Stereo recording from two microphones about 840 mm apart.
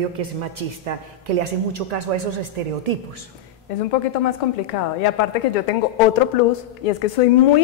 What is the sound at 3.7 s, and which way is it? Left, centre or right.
A woman's voice, left.